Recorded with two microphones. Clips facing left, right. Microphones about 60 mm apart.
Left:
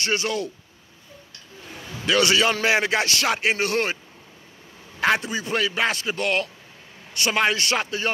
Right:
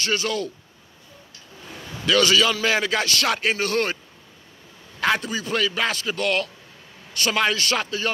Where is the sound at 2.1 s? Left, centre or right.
Left.